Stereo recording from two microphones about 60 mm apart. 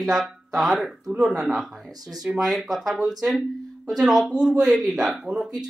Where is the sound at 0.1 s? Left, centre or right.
Centre.